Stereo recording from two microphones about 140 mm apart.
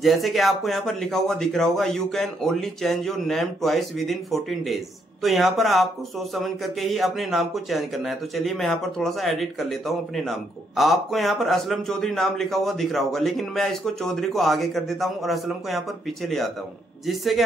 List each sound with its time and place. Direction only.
0.0 s speech: centre (ahead or behind)